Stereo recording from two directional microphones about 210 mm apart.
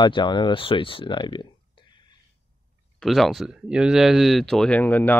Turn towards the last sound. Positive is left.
turn(degrees=10)  # may be behind; listen again after turning